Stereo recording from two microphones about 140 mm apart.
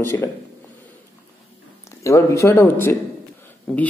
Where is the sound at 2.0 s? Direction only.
20° left (ahead or behind).